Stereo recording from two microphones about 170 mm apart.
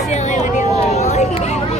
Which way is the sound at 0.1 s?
45° left (ahead or behind).